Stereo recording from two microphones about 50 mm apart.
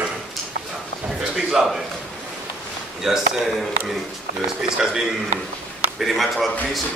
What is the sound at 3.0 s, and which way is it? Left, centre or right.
A man's voice, centre.